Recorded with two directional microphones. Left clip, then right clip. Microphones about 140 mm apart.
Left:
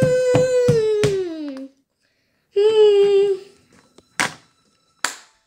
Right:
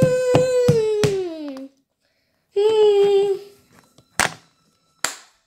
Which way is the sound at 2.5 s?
10° left (ahead or behind).